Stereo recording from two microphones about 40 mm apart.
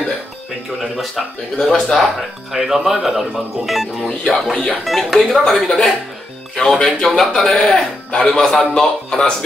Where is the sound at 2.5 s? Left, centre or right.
Centre.